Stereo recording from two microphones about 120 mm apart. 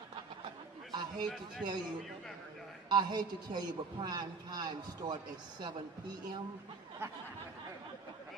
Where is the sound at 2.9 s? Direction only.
35° right (ahead or behind).